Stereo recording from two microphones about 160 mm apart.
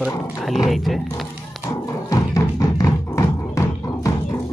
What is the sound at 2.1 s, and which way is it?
Music, 20° left (ahead or behind).